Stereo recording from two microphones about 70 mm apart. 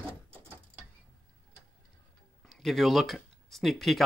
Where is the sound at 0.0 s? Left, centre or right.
Right.